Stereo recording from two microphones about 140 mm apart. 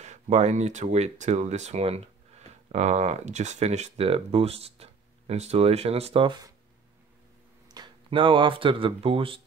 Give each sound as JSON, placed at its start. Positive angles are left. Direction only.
{"t": 0.0, "sound": "speech", "side_deg": -55}
{"t": 7.6, "sound": "speech", "side_deg": -30}